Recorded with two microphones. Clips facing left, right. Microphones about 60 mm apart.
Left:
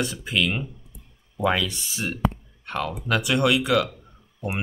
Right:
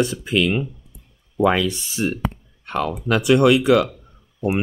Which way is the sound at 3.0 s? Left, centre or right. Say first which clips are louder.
Right 7 dB; right.